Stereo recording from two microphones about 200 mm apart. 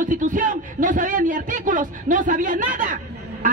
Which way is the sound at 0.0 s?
40° right (ahead or behind).